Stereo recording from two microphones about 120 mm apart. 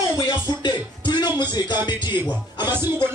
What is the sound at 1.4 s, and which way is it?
Speech, 40° left (ahead or behind).